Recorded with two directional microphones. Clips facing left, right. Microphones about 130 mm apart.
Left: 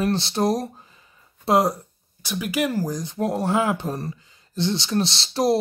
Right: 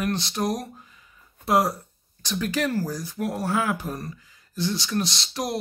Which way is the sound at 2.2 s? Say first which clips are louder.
Left 2 dB; 10° left (ahead or behind).